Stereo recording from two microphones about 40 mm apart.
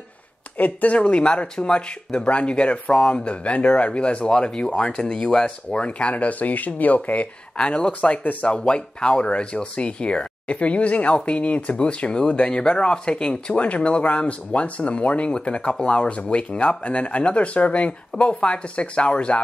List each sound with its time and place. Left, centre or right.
0.6 s speech: left
0.9 s speech: left
6.1 s speech: left
7.5 s speech: left
8.2 s speech: left
8.5 s speech: left